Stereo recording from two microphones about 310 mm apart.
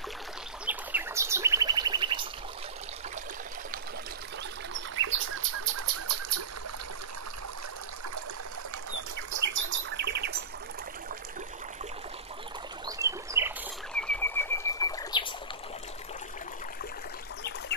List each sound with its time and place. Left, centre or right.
0.7 s bird: centre
4.9 s bird: right
5.8 s bird: right
9.7 s bird: right
12.8 s rodents: centre
13.9 s bird: centre
17.4 s a sound: left